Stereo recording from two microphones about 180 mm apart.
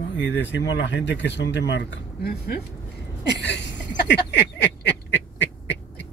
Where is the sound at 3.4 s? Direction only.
75° left (ahead or behind).